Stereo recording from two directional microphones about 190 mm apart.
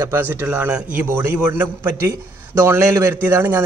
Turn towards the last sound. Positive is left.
turn(degrees=-10)  # may be behind; listen again after turning